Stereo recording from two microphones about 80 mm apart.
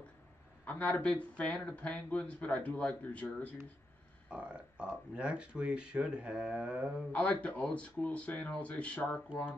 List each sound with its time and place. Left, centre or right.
0.7 s speech: centre
4.3 s speech: centre
7.1 s speech: centre